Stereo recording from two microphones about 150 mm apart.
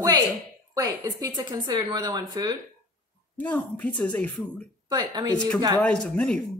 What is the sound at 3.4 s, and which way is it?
Speech, 10° left (ahead or behind).